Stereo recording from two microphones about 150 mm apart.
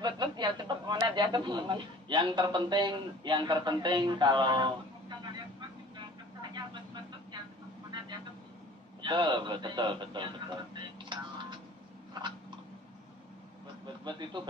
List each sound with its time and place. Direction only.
0.0 s speech: 30° right (ahead or behind)
6.5 s vehicle: 30° right (ahead or behind)
9.0 s speech: 30° right (ahead or behind)
14.0 s speech: 30° right (ahead or behind)